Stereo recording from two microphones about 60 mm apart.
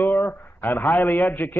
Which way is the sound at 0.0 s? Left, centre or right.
Left.